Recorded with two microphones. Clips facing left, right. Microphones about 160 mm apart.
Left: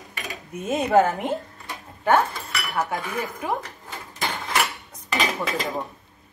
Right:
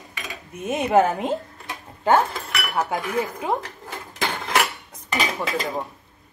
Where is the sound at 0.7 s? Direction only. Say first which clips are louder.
Even; 20° right (ahead or behind).